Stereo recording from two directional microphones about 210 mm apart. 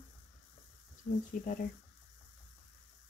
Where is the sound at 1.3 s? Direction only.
40° left (ahead or behind).